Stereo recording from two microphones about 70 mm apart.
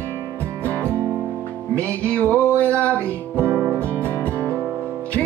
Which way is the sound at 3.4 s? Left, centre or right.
Right.